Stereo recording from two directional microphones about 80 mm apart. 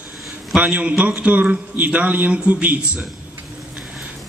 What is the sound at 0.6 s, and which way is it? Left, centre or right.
A man's voice, centre.